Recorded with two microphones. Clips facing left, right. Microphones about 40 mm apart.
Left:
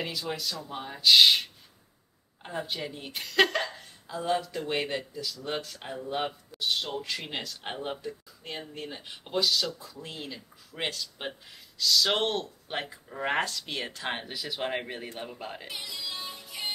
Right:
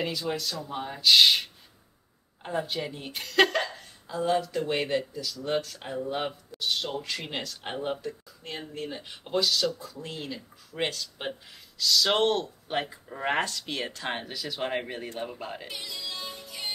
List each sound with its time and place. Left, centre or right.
0.0 s a woman's voice: centre
16.4 s music: left